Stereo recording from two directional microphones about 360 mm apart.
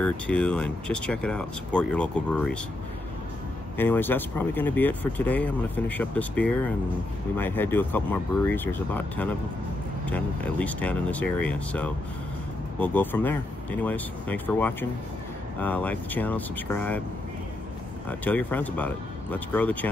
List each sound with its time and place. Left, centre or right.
0.0 s speech: centre
3.7 s speech: centre
18.2 s speech: centre